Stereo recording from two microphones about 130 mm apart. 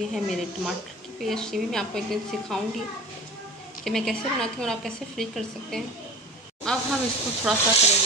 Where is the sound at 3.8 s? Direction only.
5° left (ahead or behind).